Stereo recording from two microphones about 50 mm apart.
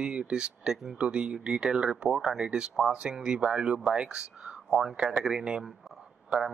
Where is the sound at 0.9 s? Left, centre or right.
Right.